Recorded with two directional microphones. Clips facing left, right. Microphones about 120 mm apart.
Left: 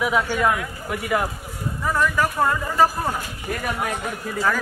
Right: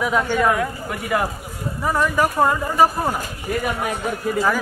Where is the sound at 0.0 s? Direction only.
5° left (ahead or behind).